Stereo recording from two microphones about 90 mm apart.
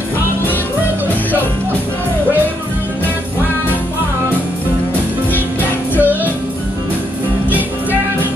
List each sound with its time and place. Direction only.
5.6 s music: 20° right (ahead or behind)
7.4 s music: 20° right (ahead or behind)